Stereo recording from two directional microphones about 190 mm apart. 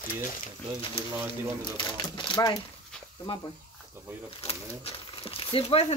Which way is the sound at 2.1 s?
25° left (ahead or behind).